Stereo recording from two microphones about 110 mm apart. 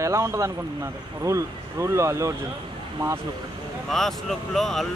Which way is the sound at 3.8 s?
5° left (ahead or behind).